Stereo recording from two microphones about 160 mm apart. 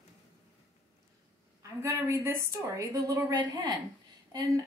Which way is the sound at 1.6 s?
15° right (ahead or behind).